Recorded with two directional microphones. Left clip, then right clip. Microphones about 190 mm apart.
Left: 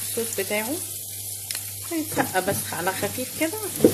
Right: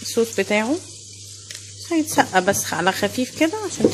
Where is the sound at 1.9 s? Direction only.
55° right (ahead or behind).